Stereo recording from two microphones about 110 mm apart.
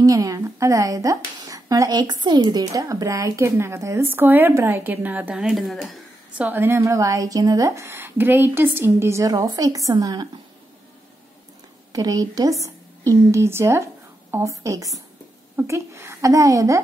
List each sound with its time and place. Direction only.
0.0 s speech: 30° right (ahead or behind); by 5.9 s centre (ahead or behind)
6.3 s speech: 15° right (ahead or behind); by 10.2 s 35° right (ahead or behind)
11.9 s a woman's voice: 30° right (ahead or behind)